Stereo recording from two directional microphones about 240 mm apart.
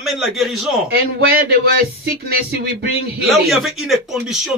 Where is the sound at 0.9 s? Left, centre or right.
Right.